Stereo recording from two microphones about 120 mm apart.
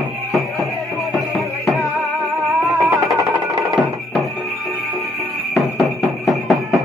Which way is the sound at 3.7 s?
Centre (ahead or behind).